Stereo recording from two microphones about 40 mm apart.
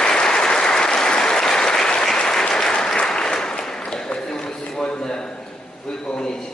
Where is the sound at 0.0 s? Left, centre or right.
Centre.